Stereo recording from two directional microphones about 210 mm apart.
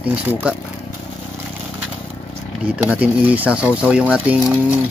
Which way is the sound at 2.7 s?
5° right (ahead or behind).